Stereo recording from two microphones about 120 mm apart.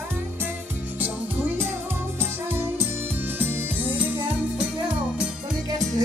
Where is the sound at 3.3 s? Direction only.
15° right (ahead or behind).